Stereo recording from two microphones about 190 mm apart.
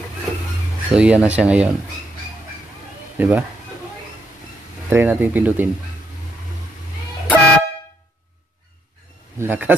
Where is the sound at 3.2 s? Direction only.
10° right (ahead or behind).